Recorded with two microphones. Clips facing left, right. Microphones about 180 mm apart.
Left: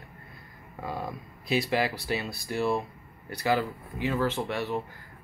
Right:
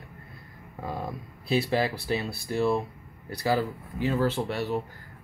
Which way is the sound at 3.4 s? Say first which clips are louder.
Right 1 dB; 40° right (ahead or behind).